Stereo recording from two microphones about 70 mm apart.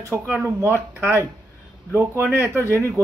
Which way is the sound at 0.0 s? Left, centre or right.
Right.